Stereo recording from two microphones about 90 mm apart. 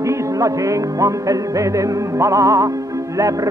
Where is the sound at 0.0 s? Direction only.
35° right (ahead or behind).